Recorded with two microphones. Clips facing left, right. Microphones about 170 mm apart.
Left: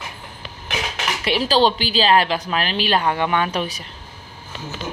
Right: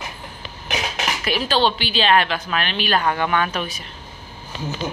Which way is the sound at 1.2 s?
30° left (ahead or behind).